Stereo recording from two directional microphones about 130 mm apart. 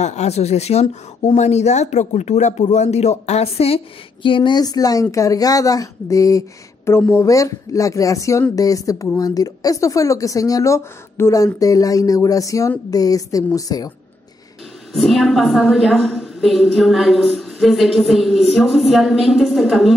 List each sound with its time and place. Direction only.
0.0 s a woman's voice: 60° left (ahead or behind); by 13.9 s 30° left (ahead or behind)
14.9 s a woman's voice: centre (ahead or behind)